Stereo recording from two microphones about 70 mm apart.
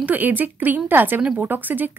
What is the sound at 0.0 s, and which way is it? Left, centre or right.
Speech, right.